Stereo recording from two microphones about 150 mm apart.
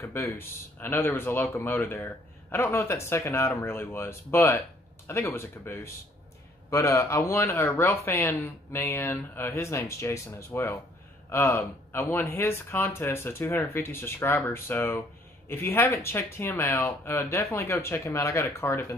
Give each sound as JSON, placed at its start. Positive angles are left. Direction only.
{"t": 0.0, "sound": "speech", "side_deg": 15}